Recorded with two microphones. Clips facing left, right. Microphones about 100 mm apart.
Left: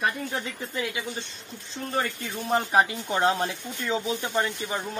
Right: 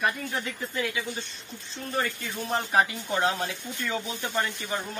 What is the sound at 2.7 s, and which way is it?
Speech, 25° left (ahead or behind).